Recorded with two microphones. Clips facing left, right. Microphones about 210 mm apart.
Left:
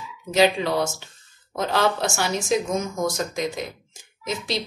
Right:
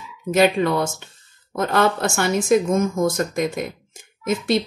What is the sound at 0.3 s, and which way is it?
Speech, 55° right (ahead or behind).